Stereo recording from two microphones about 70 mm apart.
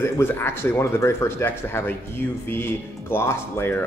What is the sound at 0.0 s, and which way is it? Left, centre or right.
Speech, left.